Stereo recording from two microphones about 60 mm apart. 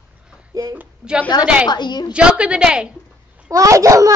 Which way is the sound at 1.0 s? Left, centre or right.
Centre.